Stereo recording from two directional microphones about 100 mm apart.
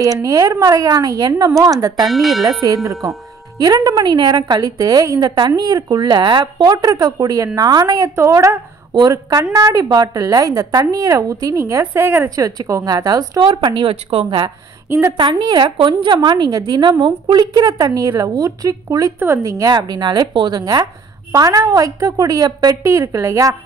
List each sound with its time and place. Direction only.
0.0 s a woman's voice: 35° right (ahead or behind)
2.0 s speech: centre (ahead or behind)
2.6 s a woman's voice: 35° right (ahead or behind)
8.9 s a woman's voice: 40° right (ahead or behind)
11.6 s a woman's voice: 25° right (ahead or behind)
12.4 s a woman's voice: 35° right (ahead or behind)
13.4 s a woman's voice: 50° right (ahead or behind)
14.9 s a woman's voice: 30° right (ahead or behind)
15.1 s a woman's voice: 50° right (ahead or behind)
19.1 s a woman's voice: 25° right (ahead or behind)